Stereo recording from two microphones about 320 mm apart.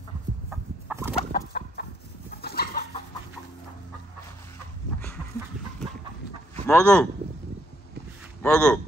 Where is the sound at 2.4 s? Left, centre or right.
Left.